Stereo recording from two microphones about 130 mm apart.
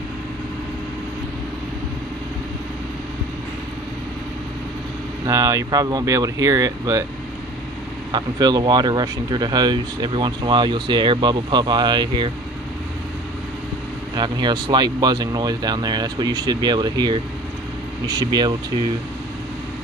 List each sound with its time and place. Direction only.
5.2 s speech: 25° right (ahead or behind)
8.1 s speech: 35° right (ahead or behind)
14.1 s speech: 35° right (ahead or behind)